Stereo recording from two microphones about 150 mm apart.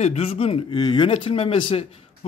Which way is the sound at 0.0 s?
45° left (ahead or behind).